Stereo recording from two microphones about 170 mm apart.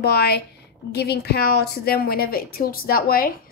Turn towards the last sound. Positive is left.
turn(degrees=60)  # may be behind; listen again after turning